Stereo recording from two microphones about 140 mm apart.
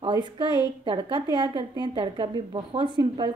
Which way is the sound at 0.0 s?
35° right (ahead or behind).